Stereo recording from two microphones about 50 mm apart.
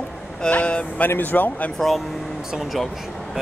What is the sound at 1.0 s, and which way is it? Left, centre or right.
Speech, left.